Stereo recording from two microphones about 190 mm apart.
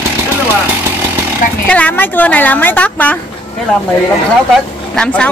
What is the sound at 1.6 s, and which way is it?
A woman's voice, 5° left (ahead or behind).